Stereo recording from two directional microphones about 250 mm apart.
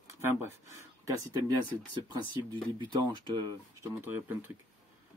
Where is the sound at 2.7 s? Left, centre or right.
Centre.